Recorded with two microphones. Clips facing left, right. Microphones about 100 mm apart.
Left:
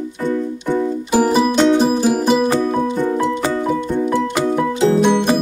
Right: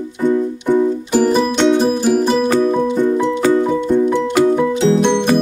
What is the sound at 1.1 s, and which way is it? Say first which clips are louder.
Music: left 1 dB; 10° left (ahead or behind).